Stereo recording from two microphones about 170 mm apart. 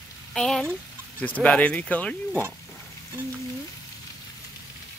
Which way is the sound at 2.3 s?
10° right (ahead or behind).